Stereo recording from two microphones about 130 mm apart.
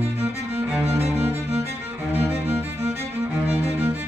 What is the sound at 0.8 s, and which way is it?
Cello, 55° right (ahead or behind).